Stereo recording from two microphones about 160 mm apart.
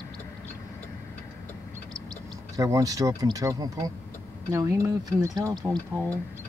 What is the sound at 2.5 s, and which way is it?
Speech, 20° right (ahead or behind).